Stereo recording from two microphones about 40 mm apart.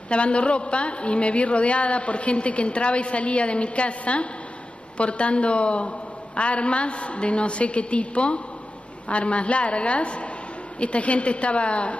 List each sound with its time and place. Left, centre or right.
0.1 s a woman's voice: left